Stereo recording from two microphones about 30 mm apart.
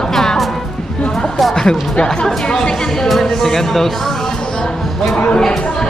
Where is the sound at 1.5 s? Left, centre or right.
Left.